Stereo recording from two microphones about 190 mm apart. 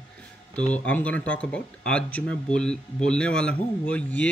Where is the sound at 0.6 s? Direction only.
5° left (ahead or behind).